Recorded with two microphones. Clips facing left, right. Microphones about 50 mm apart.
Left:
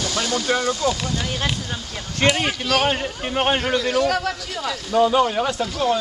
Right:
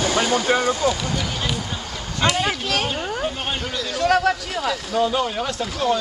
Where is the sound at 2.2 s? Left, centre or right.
Left.